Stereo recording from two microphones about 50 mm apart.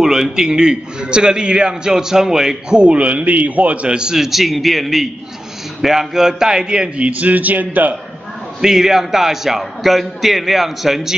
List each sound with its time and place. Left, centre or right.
0.0 s a man's voice: centre
2.8 s a man's voice: right
7.1 s speech: right
8.5 s a man's voice: centre